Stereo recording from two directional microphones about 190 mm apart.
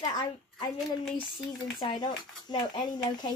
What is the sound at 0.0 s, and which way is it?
Speech, 20° left (ahead or behind).